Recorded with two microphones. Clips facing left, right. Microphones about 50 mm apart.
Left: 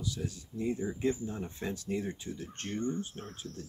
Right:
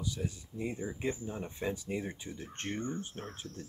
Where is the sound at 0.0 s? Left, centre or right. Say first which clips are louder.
Even; right.